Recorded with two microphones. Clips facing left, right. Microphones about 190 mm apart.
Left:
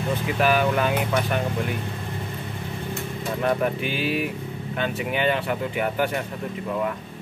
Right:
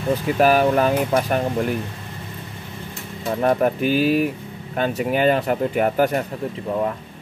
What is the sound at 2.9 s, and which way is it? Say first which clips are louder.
Speech: right 4 dB; 40° right (ahead or behind).